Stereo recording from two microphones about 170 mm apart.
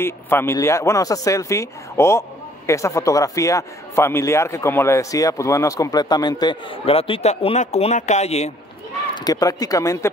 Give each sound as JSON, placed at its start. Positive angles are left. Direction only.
{"t": 0.0, "sound": "speech", "side_deg": 15}
{"t": 9.1, "sound": "speech", "side_deg": 25}